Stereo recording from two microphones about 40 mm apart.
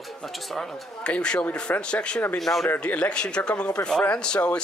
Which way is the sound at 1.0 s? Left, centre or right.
Left.